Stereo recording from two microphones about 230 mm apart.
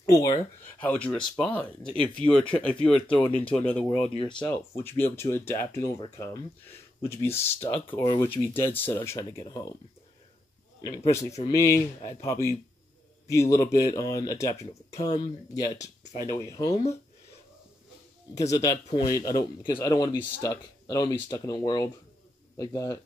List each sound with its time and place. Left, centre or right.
0.0 s speech: centre
4.1 s speech: left
5.7 s speech: left
7.0 s speech: centre
10.8 s speech: centre
18.5 s speech: centre